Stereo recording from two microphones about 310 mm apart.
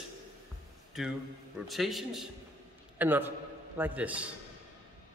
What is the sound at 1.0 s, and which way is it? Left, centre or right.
A man's voice, centre.